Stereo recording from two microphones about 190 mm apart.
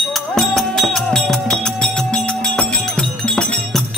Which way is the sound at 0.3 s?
Centre (ahead or behind).